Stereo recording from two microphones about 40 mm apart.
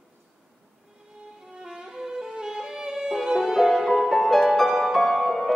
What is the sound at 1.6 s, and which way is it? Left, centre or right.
Music, centre.